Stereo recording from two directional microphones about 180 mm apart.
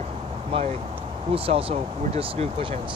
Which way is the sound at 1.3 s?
30° right (ahead or behind).